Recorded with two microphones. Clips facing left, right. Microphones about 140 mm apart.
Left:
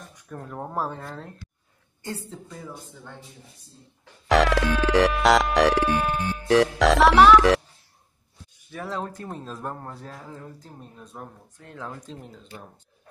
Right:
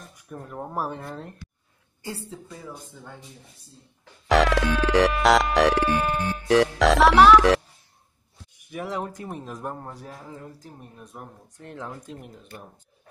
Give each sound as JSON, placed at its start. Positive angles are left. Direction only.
{"t": 0.4, "sound": "music", "side_deg": 0}
{"t": 0.7, "sound": "speech", "side_deg": -15}
{"t": 2.0, "sound": "music", "side_deg": -5}
{"t": 4.3, "sound": "music", "side_deg": 0}
{"t": 8.5, "sound": "speech", "side_deg": -15}
{"t": 11.9, "sound": "speech", "side_deg": -10}